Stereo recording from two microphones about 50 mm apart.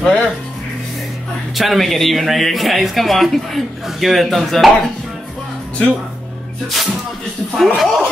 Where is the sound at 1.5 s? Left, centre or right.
Centre.